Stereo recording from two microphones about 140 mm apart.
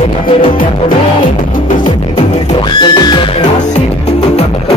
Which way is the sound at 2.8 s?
30° left (ahead or behind).